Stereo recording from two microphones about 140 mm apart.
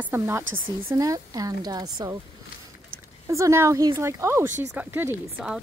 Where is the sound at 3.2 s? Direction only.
20° right (ahead or behind).